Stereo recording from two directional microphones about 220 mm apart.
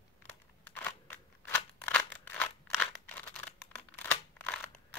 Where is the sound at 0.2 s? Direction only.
10° left (ahead or behind).